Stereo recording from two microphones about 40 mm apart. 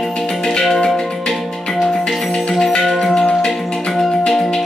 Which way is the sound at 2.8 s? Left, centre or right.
Centre.